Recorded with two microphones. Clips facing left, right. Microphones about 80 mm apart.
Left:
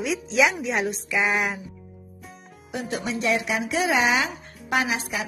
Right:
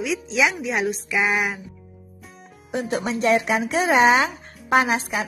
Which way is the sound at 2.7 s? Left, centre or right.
Right.